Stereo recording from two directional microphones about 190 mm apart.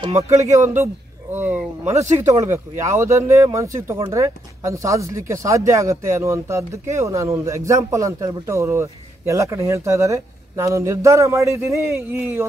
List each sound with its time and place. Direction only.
0.0 s speech: 15° right (ahead or behind)